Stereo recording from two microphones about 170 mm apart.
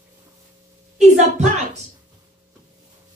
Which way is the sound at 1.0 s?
40° right (ahead or behind).